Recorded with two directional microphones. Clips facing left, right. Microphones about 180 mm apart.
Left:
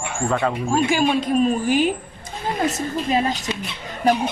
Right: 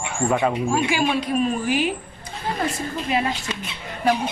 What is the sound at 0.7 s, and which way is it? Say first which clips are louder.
A woman's voice: left 3 dB; 45° left (ahead or behind).